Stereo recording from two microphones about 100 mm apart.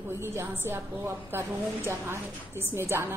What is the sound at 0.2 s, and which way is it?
A woman's voice, 25° right (ahead or behind).